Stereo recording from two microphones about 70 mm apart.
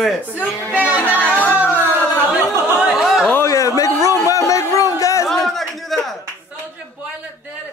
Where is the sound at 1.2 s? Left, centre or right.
Right.